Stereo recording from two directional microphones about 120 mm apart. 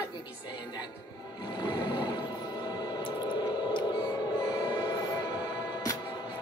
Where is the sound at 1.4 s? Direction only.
35° left (ahead or behind).